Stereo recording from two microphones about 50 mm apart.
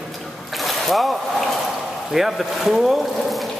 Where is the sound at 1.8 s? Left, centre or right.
Centre.